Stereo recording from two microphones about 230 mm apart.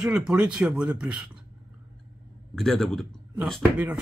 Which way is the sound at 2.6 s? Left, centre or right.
Centre.